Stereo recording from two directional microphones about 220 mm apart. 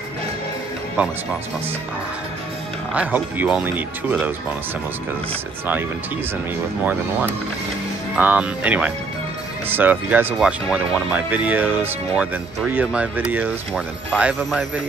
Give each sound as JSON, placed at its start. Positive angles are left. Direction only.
{"t": 2.9, "sound": "speech", "side_deg": -5}
{"t": 8.2, "sound": "speech", "side_deg": -5}